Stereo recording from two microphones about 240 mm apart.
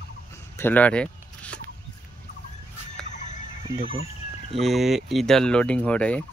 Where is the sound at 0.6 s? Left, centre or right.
Centre.